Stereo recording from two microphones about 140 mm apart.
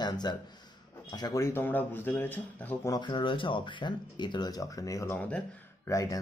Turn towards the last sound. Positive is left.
turn(degrees=20)  # may be behind; listen again after turning